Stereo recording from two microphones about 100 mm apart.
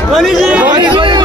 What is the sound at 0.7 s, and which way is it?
Chatter, 55° right (ahead or behind).